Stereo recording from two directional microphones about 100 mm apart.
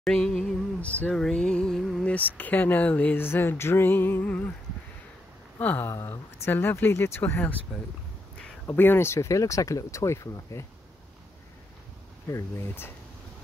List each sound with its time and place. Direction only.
0.0 s a sound: 5° left (ahead or behind)
2.0 s speech: 15° left (ahead or behind)
5.6 s speech: 20° left (ahead or behind)
8.6 s speech: 20° left (ahead or behind)
12.3 s speech: 25° left (ahead or behind)